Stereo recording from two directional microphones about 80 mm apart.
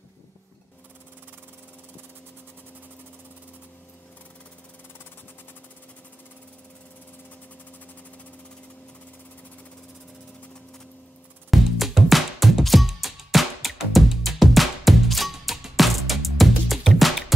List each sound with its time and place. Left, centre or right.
11.5 s music: centre